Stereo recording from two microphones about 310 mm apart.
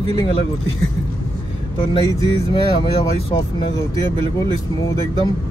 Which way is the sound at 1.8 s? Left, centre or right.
Centre.